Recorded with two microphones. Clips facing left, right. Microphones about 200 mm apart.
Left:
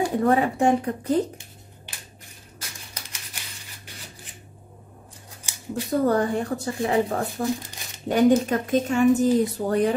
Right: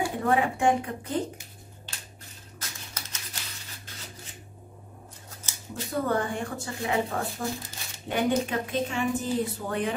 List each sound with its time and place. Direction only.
0.0 s speech: 40° left (ahead or behind)
2.9 s a sound: 15° left (ahead or behind)
5.4 s scissors: 15° left (ahead or behind)
5.9 s speech: 40° left (ahead or behind)